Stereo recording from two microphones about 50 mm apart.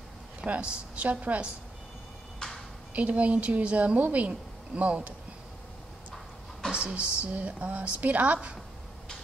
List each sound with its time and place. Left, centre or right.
0.4 s a woman's voice: right
2.9 s a woman's voice: right
6.7 s a woman's voice: centre